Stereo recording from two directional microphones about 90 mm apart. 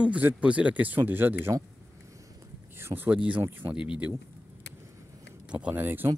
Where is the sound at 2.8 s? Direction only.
30° right (ahead or behind).